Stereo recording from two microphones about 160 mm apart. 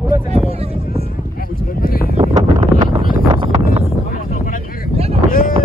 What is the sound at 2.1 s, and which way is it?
Wind noise, 40° right (ahead or behind).